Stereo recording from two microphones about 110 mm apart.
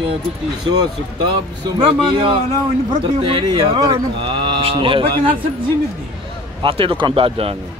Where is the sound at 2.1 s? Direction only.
55° right (ahead or behind).